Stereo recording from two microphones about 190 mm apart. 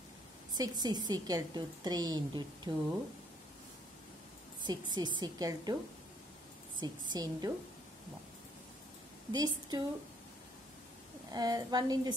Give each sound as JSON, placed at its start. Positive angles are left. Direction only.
{"t": 0.6, "sound": "a woman's voice", "side_deg": -20}
{"t": 4.6, "sound": "a woman's voice", "side_deg": -25}
{"t": 6.8, "sound": "a woman's voice", "side_deg": -20}
{"t": 9.3, "sound": "a woman's voice", "side_deg": -20}
{"t": 11.2, "sound": "a woman's voice", "side_deg": -20}